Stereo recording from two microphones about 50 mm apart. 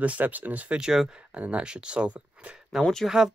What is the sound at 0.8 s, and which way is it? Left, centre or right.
Speech, centre.